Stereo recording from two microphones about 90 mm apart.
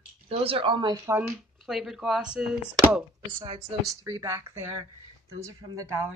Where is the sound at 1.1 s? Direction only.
35° right (ahead or behind).